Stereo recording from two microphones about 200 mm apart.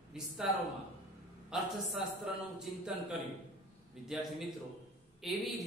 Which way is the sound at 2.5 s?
5° right (ahead or behind).